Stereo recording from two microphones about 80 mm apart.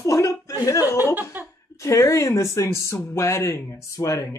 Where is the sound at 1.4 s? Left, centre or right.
Right.